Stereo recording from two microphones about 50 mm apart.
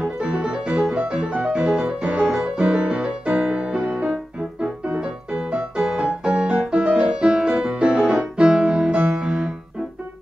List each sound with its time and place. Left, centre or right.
0.0 s music: centre
1.6 s piano: centre
1.9 s music: centre
5.8 s piano: centre
6.6 s music: right